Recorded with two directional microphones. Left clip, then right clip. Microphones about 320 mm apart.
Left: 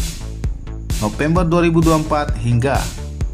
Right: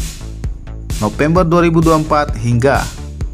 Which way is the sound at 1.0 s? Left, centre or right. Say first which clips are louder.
Right 5 dB; centre.